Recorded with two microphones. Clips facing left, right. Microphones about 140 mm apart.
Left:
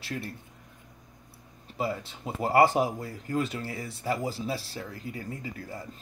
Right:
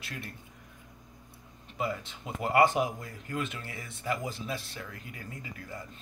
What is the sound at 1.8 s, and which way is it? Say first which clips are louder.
Speech: left 2 dB; 35° left (ahead or behind).